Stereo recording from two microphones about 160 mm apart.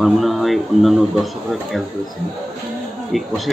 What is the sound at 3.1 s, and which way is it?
Speech, centre (ahead or behind).